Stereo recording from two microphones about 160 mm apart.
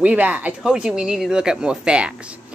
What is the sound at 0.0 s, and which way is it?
Speech, 10° right (ahead or behind).